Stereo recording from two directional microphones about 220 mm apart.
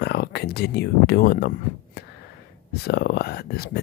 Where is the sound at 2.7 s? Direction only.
45° left (ahead or behind).